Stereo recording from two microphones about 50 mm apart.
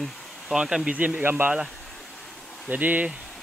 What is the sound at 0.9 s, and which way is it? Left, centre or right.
Speech, right.